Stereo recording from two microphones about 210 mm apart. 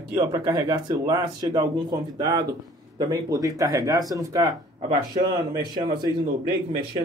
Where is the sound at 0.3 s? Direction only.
20° right (ahead or behind).